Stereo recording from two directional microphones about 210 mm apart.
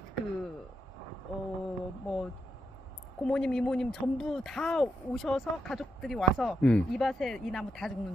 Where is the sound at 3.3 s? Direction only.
5° left (ahead or behind).